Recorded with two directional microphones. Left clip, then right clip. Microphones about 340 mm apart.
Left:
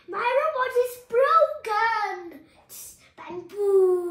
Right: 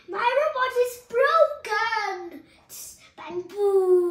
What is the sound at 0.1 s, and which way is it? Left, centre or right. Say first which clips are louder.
Child singing: right 1 dB; centre.